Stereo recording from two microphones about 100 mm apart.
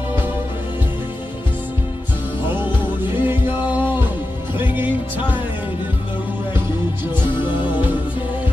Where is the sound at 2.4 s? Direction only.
50° left (ahead or behind).